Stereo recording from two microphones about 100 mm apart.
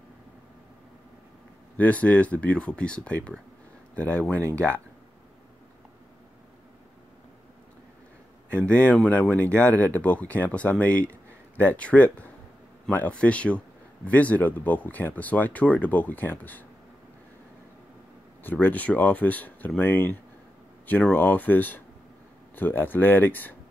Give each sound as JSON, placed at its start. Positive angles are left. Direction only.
{"t": 1.8, "sound": "speech", "side_deg": 15}
{"t": 4.4, "sound": "speech", "side_deg": -30}
{"t": 8.5, "sound": "speech", "side_deg": 10}
{"t": 18.4, "sound": "speech", "side_deg": 20}